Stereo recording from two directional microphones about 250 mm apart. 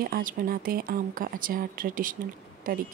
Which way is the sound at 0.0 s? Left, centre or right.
Right.